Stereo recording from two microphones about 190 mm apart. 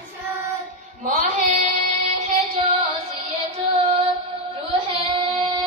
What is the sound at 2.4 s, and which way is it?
Music, 30° right (ahead or behind).